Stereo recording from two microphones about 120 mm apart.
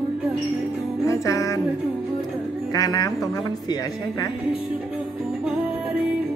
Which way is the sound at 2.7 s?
30° left (ahead or behind).